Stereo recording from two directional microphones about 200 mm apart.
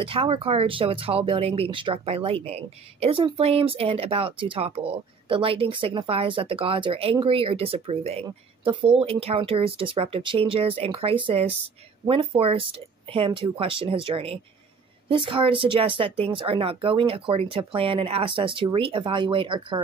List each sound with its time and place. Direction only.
0.0 s speech: 25° right (ahead or behind)